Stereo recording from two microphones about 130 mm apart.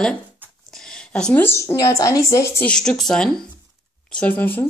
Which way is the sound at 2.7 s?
5° left (ahead or behind).